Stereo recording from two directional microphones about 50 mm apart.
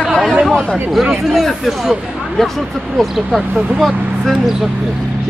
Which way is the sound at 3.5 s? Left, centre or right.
Centre.